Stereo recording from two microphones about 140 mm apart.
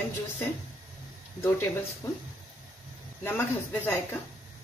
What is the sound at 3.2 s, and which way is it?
Speech, 15° left (ahead or behind).